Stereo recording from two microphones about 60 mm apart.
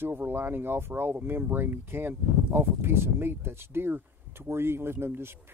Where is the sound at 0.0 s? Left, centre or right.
Right.